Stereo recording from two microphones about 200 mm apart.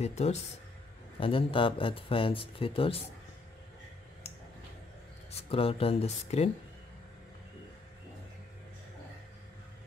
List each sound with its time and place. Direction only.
0.0 s speech: 35° left (ahead or behind)
5.3 s speech: 30° left (ahead or behind)